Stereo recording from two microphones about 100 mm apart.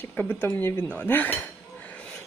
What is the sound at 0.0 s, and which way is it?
Speech, 20° left (ahead or behind).